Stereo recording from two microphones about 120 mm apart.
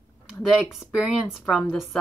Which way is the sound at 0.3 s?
Centre (ahead or behind).